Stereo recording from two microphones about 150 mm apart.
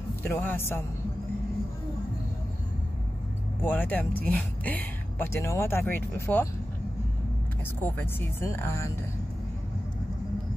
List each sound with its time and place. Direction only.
0.1 s a man's voice: 15° left (ahead or behind)
3.6 s speech: 10° left (ahead or behind)
7.8 s speech: 15° left (ahead or behind)